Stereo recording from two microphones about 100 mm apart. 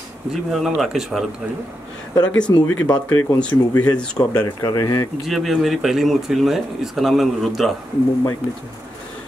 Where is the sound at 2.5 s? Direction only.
35° left (ahead or behind).